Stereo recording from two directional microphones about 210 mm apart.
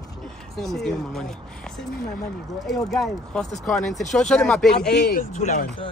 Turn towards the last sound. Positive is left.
turn(degrees=35)  # may be behind; listen again after turning